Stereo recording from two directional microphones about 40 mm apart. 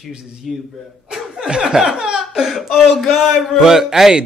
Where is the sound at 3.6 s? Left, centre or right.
Centre.